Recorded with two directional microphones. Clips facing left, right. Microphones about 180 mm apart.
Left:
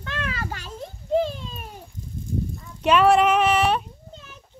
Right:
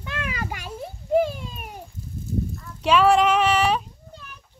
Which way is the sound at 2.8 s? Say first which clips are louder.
Left 1 dB; 5° left (ahead or behind).